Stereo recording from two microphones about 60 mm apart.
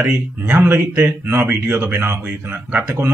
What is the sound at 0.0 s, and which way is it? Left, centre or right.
Speech, right.